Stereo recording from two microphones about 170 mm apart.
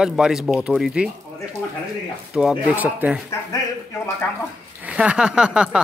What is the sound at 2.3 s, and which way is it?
Speech, 5° right (ahead or behind).